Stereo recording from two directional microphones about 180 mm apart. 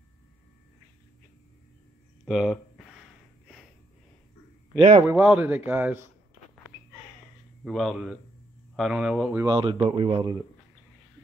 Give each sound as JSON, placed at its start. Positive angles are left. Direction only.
{"t": 2.2, "sound": "speech", "side_deg": -5}
{"t": 4.7, "sound": "speech", "side_deg": -30}
{"t": 5.0, "sound": "speech", "side_deg": -10}
{"t": 7.6, "sound": "speech", "side_deg": 0}
{"t": 9.3, "sound": "speech", "side_deg": -15}
{"t": 9.6, "sound": "speech", "side_deg": -30}